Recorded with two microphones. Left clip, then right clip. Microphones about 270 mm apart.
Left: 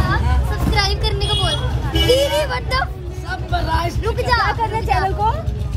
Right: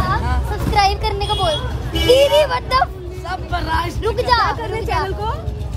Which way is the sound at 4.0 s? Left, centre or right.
Right.